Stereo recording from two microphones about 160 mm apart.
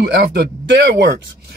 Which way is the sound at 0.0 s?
90° right.